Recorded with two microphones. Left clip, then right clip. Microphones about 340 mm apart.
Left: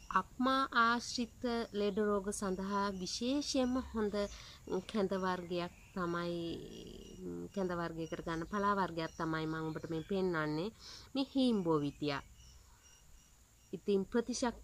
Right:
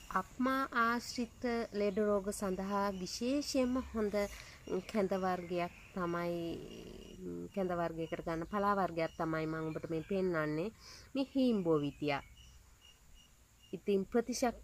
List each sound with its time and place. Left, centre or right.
0.1 s speech: centre
6.3 s speech: centre
7.5 s speech: centre
13.7 s speech: centre